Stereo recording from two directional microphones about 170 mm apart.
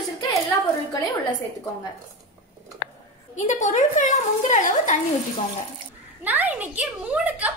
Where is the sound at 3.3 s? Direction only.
45° left (ahead or behind).